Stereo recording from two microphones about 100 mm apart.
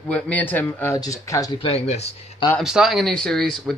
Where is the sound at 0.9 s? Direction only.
35° left (ahead or behind).